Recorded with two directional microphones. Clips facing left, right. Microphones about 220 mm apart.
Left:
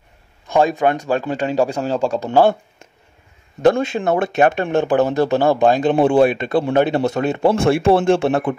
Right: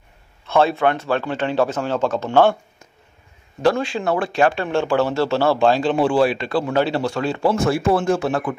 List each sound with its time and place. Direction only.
0.5 s speech: 15° left (ahead or behind)
3.6 s speech: 20° left (ahead or behind)